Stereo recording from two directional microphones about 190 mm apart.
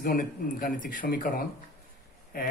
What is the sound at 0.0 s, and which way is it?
Speech, 50° left (ahead or behind).